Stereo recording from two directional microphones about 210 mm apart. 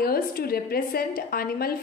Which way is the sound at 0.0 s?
45° left (ahead or behind).